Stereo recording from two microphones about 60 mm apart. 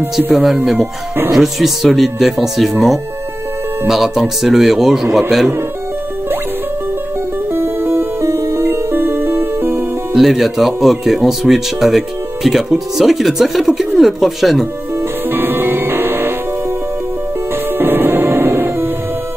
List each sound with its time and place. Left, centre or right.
0.3 s speech: centre
7.5 s music: right
10.1 s speech: centre
15.3 s music: right
17.7 s music: right